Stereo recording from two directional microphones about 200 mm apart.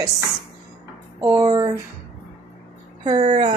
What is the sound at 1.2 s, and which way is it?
Speech, 20° right (ahead or behind).